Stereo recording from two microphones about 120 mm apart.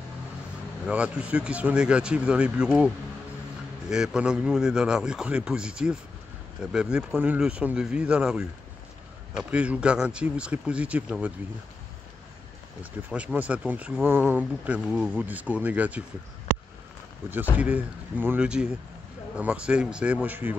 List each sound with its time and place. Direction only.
0.8 s a man's voice: 10° right (ahead or behind)
3.9 s a man's voice: 5° right (ahead or behind)
13.1 s a man's voice: 10° right (ahead or behind)
17.6 s a man's voice: 10° right (ahead or behind)